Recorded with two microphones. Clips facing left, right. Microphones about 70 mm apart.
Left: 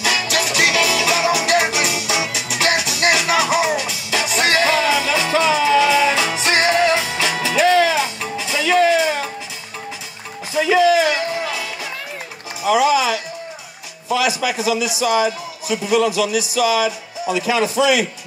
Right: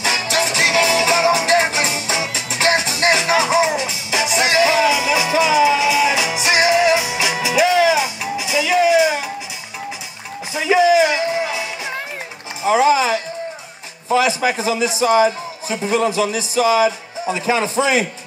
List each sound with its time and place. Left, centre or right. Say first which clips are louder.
0.0 s music: right 1 dB; right
10.5 s music: even; right
12.6 s music: right 1 dB; right
14.0 s a man's voice: right 3 dB; right